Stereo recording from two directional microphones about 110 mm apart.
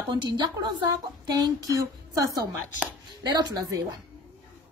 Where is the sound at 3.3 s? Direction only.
40° right (ahead or behind).